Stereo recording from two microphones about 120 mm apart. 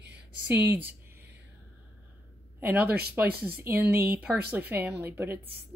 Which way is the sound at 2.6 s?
15° right (ahead or behind).